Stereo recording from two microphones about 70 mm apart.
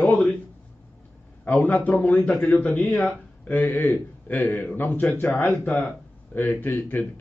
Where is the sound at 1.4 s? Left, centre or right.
Left.